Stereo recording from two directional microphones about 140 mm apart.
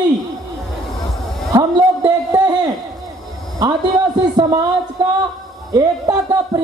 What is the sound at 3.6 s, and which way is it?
A man's voice, 30° right (ahead or behind).